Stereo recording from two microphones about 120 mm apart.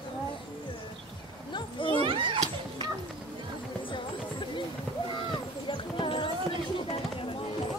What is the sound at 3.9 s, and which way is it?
Music, 45° left (ahead or behind).